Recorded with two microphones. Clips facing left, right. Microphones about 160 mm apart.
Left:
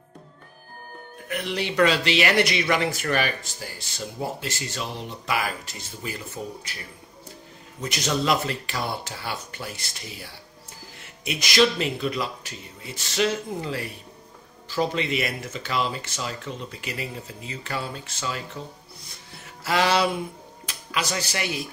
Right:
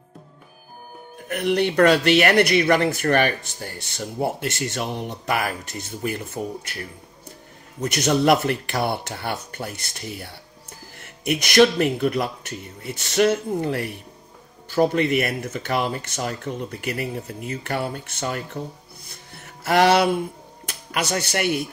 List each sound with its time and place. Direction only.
1.3 s speech: 55° right (ahead or behind)
7.8 s speech: 60° right (ahead or behind)
19.3 s music: 60° right (ahead or behind)
20.9 s speech: 60° right (ahead or behind)